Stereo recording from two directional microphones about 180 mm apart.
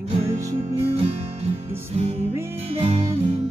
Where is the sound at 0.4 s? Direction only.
15° right (ahead or behind).